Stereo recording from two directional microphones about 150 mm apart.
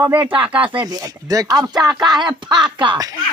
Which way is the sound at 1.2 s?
25° right (ahead or behind).